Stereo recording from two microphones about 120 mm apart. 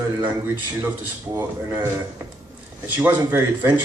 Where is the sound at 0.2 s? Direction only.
15° right (ahead or behind).